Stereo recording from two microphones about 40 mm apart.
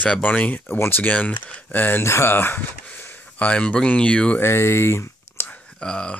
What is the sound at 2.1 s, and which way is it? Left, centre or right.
Speech, left.